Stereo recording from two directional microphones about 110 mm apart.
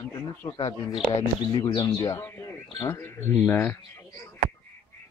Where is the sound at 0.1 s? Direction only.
30° left (ahead or behind).